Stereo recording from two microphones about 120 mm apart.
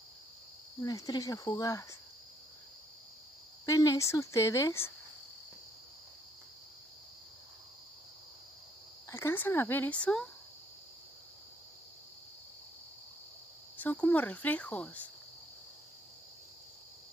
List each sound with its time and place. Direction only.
0.8 s speech: 30° left (ahead or behind)
3.6 s speech: 30° left (ahead or behind)
9.1 s cricket: 20° left (ahead or behind)
13.7 s cricket: 15° left (ahead or behind)